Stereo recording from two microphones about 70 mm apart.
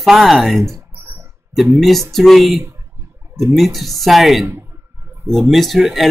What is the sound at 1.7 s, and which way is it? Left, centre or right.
Speech, centre.